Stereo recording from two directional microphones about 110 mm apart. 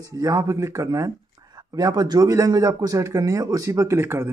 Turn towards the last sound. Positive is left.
turn(degrees=-20)  # may be behind; listen again after turning